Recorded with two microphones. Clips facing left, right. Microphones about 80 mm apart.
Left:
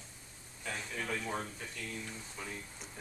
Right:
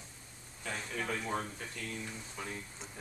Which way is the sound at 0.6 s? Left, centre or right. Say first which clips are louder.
Right 1 dB; centre.